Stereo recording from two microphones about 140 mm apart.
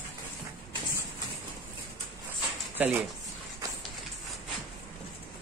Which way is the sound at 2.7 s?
15° right (ahead or behind).